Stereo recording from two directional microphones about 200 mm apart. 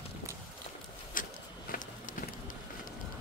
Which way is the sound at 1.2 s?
45° left (ahead or behind).